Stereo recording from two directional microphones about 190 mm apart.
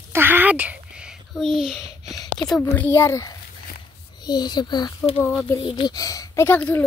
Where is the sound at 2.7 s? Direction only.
10° left (ahead or behind).